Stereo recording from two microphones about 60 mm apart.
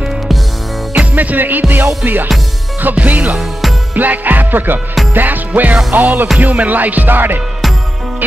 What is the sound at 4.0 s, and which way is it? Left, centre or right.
Speech, right.